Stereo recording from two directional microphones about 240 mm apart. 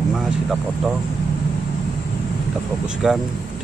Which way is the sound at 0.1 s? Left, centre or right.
Centre.